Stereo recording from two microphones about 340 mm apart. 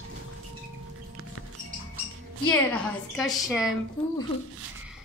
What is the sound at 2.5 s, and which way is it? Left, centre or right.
A woman's voice, centre.